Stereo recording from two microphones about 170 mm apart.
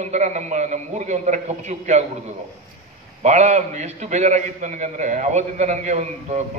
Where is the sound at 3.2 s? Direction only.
45° right (ahead or behind).